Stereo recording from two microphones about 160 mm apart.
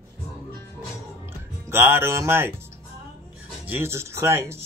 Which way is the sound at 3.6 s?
15° right (ahead or behind).